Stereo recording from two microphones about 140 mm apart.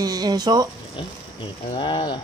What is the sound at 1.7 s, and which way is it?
Speech, 35° left (ahead or behind).